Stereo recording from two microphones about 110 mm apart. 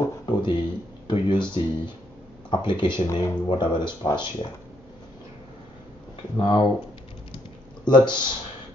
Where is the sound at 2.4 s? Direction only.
45° left (ahead or behind).